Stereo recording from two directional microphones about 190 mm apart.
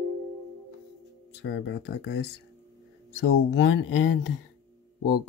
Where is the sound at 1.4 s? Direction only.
70° left (ahead or behind).